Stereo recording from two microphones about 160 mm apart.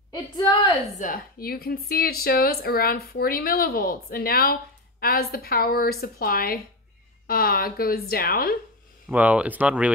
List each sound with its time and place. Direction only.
0.1 s a woman's voice: 30° left (ahead or behind)
0.9 s a woman's voice: 60° left (ahead or behind)
9.1 s speech: 10° right (ahead or behind)